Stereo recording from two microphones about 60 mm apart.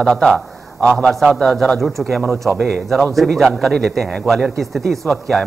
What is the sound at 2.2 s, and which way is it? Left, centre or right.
Speech, right.